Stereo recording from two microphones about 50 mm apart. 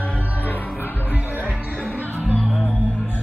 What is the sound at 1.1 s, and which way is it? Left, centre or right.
Music, right.